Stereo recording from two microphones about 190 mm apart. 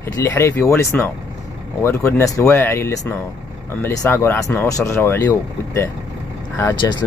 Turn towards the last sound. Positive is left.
turn(degrees=20)  # may be behind; listen again after turning